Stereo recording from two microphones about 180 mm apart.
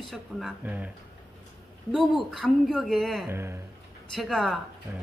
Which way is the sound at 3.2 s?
15° right (ahead or behind).